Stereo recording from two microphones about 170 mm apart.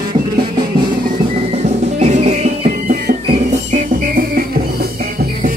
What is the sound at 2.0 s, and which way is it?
Music, 45° right (ahead or behind).